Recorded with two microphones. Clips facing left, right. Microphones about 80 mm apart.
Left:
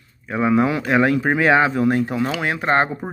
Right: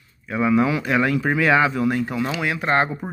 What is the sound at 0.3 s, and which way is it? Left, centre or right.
Speech, left.